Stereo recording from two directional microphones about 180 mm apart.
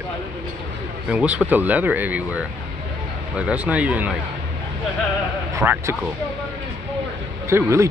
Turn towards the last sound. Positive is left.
turn(degrees=-15)  # may be behind; listen again after turning